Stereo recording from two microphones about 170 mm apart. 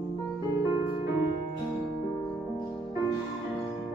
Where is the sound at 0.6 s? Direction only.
20° right (ahead or behind).